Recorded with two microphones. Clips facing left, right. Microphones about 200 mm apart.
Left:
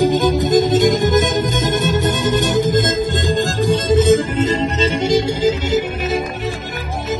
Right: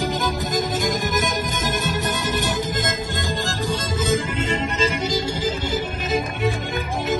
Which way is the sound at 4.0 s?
35° left (ahead or behind).